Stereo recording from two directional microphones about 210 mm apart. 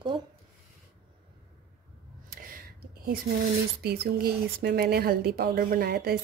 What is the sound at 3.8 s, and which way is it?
A woman's voice, 50° right (ahead or behind).